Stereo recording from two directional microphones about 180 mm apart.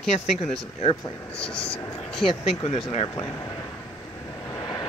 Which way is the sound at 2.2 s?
Centre (ahead or behind).